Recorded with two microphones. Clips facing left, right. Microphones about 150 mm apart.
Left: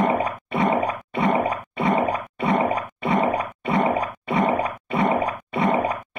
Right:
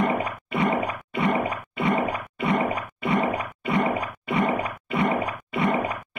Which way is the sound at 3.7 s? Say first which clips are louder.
Left 3 dB; 25° left (ahead or behind).